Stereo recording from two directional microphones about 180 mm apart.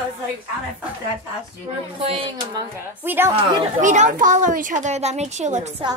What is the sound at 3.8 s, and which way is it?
A child's voice, 45° right (ahead or behind).